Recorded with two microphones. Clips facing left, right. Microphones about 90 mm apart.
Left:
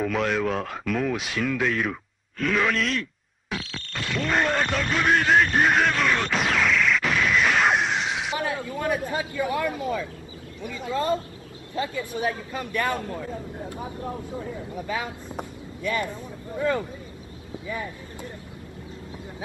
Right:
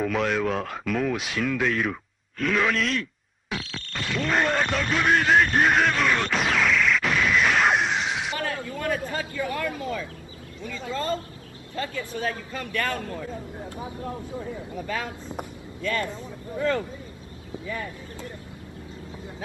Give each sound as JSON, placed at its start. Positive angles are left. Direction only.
{"t": 0.0, "sound": "speech", "side_deg": 0}
{"t": 8.4, "sound": "speech", "side_deg": 15}
{"t": 14.9, "sound": "speech", "side_deg": 15}